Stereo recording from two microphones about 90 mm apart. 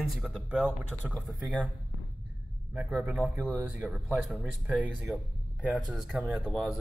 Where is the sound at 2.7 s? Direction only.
15° right (ahead or behind).